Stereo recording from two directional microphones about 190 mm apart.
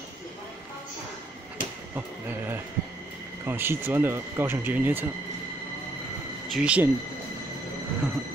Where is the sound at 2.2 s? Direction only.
10° right (ahead or behind).